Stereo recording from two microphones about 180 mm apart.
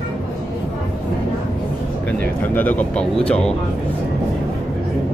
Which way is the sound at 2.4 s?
10° left (ahead or behind).